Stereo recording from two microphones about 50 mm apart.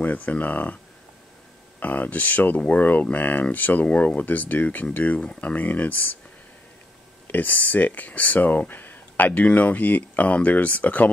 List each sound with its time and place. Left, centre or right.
0.0 s speech: left
1.8 s speech: left
7.2 s speech: left